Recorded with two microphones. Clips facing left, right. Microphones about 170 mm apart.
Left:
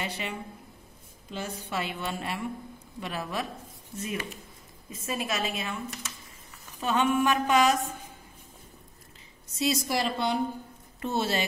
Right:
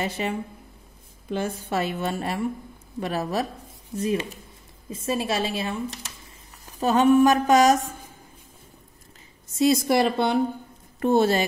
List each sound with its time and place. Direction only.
0.0 s a woman's voice: 45° right (ahead or behind)
9.6 s a woman's voice: 55° right (ahead or behind)